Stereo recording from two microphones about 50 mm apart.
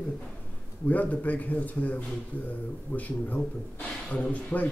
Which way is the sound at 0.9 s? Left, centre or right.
Left.